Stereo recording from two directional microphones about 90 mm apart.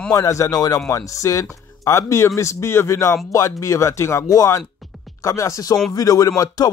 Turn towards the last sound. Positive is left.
turn(degrees=45)  # may be behind; listen again after turning